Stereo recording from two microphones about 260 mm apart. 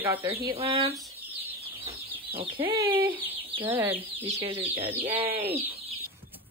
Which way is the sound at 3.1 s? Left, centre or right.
Centre.